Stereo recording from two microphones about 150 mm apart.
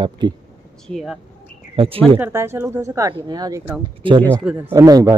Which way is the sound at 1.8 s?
40° right (ahead or behind).